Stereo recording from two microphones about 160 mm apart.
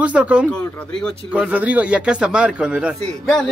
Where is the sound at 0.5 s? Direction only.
5° left (ahead or behind).